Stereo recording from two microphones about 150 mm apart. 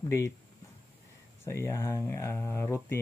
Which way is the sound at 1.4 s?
20° left (ahead or behind).